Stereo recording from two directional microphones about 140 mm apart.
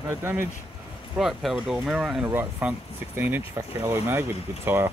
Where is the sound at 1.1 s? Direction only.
Centre (ahead or behind).